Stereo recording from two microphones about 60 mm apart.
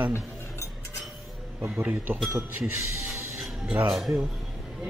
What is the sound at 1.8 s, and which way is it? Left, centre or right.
Speech, right.